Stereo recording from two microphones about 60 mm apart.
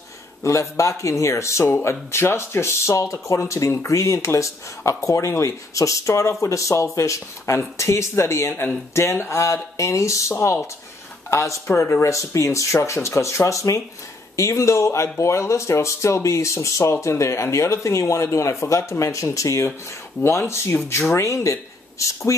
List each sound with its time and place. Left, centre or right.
0.4 s speech: left
20.2 s speech: left